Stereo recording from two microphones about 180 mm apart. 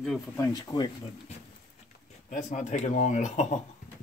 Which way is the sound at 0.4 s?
20° left (ahead or behind).